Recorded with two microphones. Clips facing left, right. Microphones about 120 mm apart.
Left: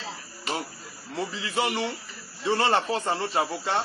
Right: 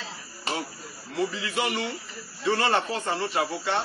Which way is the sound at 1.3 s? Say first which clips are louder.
Left 1 dB; 30° left (ahead or behind).